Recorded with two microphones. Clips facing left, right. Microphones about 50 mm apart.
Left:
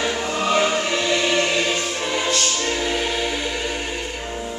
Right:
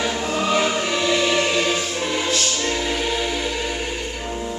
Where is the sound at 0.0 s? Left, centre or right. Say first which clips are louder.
Even; centre.